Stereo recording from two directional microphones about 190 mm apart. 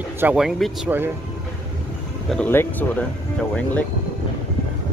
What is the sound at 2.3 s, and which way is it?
Speech, 10° left (ahead or behind).